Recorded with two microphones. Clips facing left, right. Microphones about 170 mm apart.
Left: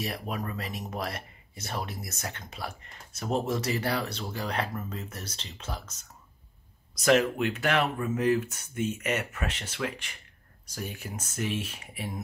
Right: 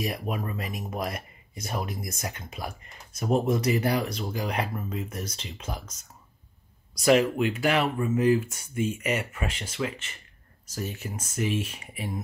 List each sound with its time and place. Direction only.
0.0 s speech: 10° right (ahead or behind)
7.0 s speech: 5° right (ahead or behind)